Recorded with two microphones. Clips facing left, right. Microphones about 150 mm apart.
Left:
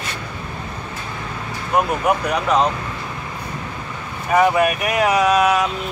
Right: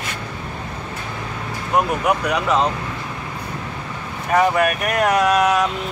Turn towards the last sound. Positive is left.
turn(degrees=5)  # may be behind; listen again after turning